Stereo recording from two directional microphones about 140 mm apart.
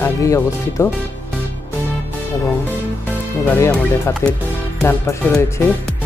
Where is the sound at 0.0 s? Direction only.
20° left (ahead or behind).